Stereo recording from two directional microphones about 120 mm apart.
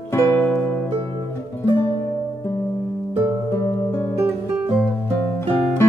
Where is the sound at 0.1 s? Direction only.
20° left (ahead or behind).